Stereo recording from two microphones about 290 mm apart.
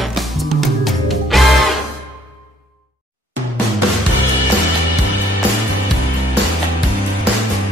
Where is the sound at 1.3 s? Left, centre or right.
Centre.